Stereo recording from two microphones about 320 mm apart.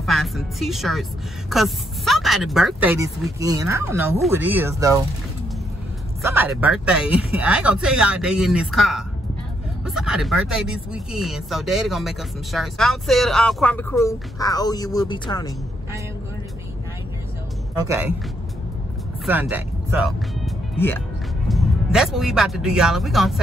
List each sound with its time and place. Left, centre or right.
0.0 s a woman's voice: centre
6.2 s speech: centre
17.7 s speech: centre
19.2 s speech: centre